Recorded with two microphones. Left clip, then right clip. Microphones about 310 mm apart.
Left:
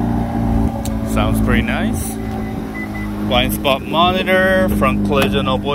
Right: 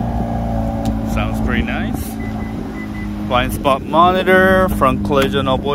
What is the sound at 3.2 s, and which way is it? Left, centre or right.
Speech, centre.